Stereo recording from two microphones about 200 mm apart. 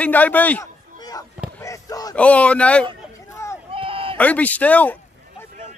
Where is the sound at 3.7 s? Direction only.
25° right (ahead or behind).